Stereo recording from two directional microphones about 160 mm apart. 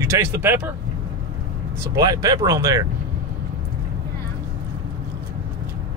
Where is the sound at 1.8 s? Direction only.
20° right (ahead or behind).